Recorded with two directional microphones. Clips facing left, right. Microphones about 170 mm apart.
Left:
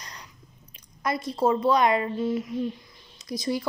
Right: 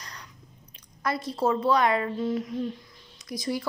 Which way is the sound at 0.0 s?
20° left (ahead or behind).